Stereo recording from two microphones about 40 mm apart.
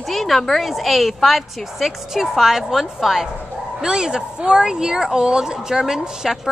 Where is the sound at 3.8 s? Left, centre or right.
Centre.